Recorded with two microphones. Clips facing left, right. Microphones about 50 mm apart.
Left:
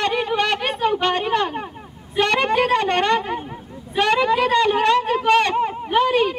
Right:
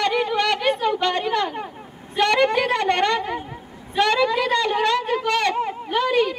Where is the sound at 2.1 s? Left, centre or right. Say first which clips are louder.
Right 1 dB; left.